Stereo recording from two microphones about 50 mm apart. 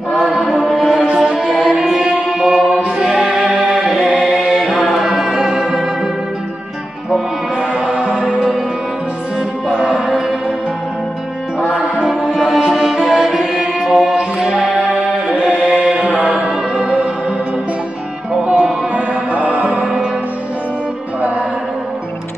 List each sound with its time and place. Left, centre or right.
0.3 s mantra: centre
1.0 s music: centre
4.2 s chant: centre
4.9 s music: centre
7.5 s music: centre
9.7 s music: centre
12.0 s music: centre
14.1 s music: centre
18.4 s music: right
19.8 s music: centre